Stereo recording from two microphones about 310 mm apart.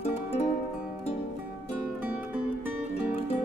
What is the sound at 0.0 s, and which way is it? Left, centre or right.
Music, centre.